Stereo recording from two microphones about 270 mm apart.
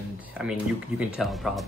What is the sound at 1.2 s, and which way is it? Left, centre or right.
Speech, centre.